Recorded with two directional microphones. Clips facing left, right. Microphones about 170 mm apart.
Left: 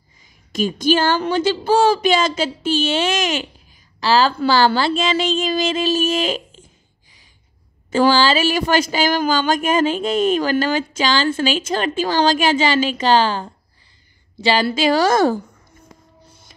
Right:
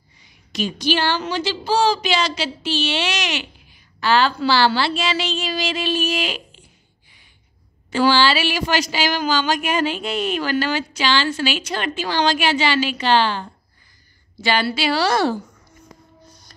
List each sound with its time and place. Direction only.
0.5 s speech: 45° left (ahead or behind)
3.5 s a sound: 35° left (ahead or behind)
4.3 s speech: 50° left (ahead or behind)
7.9 s speech: 45° left (ahead or behind)